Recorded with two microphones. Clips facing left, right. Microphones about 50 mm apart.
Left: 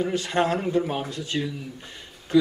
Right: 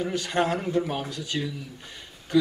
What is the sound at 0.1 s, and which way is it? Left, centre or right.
Speech, left.